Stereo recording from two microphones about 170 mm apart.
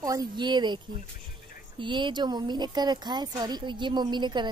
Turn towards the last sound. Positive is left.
turn(degrees=-25)  # may be behind; listen again after turning